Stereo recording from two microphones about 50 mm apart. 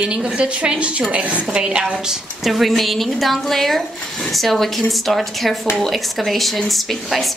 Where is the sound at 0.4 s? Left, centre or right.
Right.